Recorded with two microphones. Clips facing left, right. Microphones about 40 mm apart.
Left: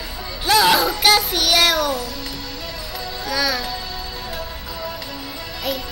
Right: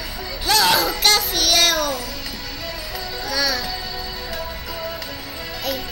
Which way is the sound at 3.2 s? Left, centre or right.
Centre.